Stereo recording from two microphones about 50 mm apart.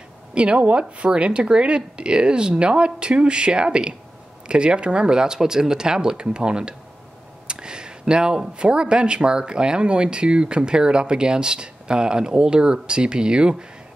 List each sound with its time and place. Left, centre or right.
0.3 s speech: right